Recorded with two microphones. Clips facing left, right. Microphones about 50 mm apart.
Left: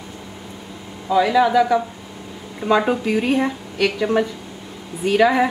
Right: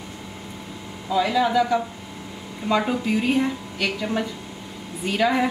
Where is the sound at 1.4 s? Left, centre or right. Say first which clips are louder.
Left 4 dB; centre.